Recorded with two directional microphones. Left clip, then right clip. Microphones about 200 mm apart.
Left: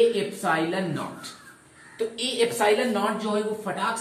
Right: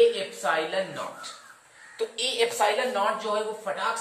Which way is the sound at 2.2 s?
25° right (ahead or behind).